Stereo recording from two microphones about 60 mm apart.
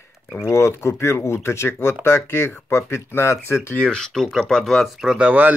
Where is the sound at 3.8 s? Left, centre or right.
Centre.